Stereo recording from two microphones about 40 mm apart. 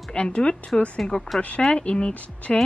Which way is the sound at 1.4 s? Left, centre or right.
Left.